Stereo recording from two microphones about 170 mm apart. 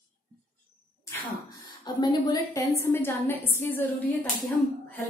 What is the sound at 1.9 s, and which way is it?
A woman's voice, 25° left (ahead or behind).